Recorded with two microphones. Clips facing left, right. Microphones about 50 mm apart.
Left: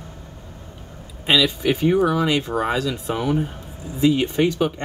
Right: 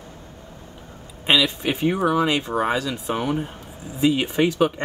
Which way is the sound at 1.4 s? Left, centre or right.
Right.